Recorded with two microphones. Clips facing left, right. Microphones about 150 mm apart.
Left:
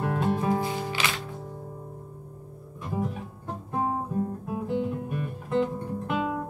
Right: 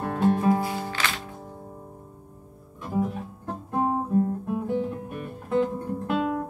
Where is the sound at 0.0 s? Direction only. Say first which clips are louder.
Right 4 dB; centre (ahead or behind).